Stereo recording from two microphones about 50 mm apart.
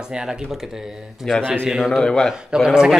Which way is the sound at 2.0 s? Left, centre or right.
Centre.